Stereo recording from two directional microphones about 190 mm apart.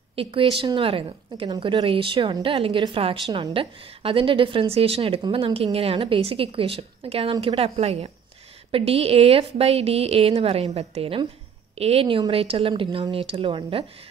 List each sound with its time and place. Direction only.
0.1 s a woman's voice: 30° right (ahead or behind)